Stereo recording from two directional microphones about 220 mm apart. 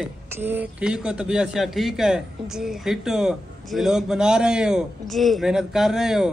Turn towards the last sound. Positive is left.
turn(degrees=0)  # may be behind; listen again after turning